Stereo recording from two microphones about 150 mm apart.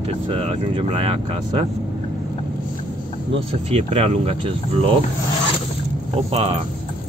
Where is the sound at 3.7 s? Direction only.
45° right (ahead or behind).